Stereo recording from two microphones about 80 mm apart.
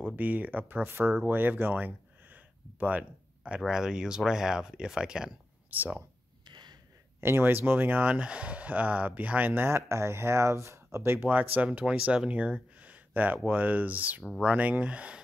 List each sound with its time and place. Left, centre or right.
0.0 s speech: right
5.7 s speech: right
6.4 s a sound: right
7.2 s speech: right
9.5 s speech: right; by 15.2 s centre